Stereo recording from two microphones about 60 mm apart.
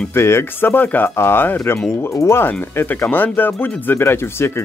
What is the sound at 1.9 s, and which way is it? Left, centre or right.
Speech, left.